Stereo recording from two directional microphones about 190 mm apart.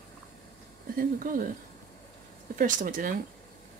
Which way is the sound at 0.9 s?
45° right (ahead or behind).